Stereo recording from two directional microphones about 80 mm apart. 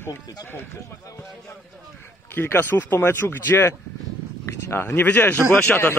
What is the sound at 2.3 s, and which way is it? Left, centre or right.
Speech, left.